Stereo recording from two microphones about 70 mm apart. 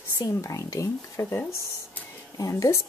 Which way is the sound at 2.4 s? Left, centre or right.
Left.